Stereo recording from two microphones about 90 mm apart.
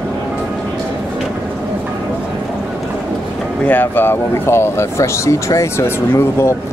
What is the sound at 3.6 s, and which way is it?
Speech, 20° left (ahead or behind).